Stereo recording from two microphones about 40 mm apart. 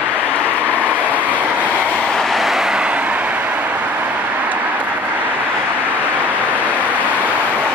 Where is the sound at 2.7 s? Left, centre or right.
Right.